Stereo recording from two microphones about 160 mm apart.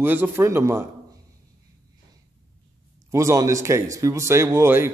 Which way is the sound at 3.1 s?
20° right (ahead or behind).